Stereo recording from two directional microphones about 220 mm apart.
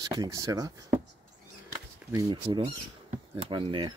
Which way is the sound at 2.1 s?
15° right (ahead or behind).